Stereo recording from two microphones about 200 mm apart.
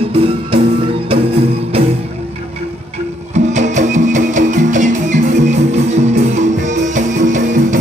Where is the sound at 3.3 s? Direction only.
35° right (ahead or behind).